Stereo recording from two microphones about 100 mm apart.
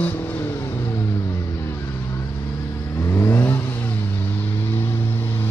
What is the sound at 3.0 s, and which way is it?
Vehicle, 25° left (ahead or behind).